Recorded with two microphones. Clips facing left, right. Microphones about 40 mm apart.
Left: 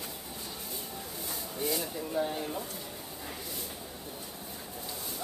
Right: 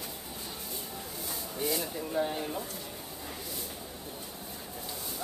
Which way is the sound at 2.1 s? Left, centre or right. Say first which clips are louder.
Right 1 dB; centre.